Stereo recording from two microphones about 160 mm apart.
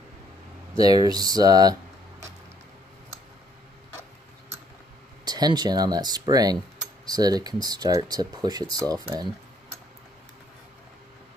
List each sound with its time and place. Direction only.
0.7 s speech: 25° right (ahead or behind)
5.2 s speech: 25° right (ahead or behind)